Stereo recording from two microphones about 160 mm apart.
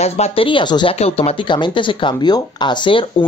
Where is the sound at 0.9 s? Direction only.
40° left (ahead or behind).